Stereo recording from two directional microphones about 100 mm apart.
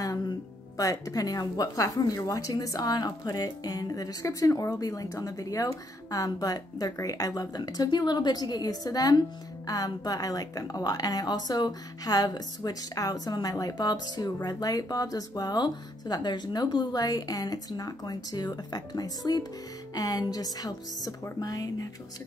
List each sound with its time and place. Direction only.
0.7 s a woman's voice: 40° left (ahead or behind)